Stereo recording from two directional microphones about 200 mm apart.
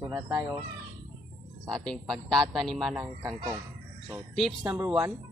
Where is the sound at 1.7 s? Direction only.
Centre (ahead or behind).